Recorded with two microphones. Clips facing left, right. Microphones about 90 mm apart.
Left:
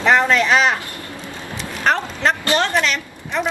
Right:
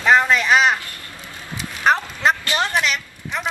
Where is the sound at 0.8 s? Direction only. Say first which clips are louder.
Left 4 dB; 20° left (ahead or behind).